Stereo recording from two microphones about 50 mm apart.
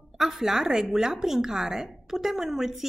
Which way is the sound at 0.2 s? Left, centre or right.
Centre.